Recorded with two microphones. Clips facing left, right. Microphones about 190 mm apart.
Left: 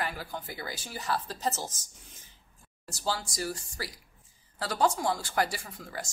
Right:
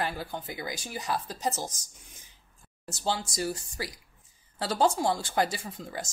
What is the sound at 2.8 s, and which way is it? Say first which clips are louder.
Speech: right 2 dB; 20° right (ahead or behind).